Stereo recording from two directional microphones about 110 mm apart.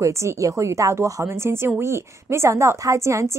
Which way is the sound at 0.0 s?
25° right (ahead or behind).